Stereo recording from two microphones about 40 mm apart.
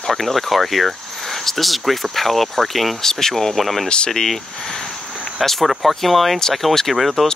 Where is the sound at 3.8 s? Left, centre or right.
Left.